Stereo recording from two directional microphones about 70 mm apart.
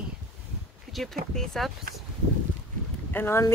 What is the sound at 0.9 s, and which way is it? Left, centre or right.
Speech, centre.